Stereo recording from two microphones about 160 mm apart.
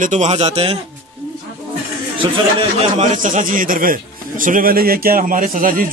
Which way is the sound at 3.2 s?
55° right (ahead or behind).